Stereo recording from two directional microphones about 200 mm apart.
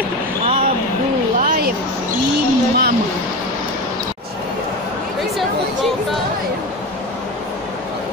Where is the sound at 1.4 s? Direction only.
45° right (ahead or behind).